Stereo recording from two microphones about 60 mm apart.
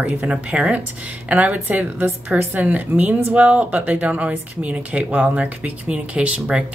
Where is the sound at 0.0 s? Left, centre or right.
Centre.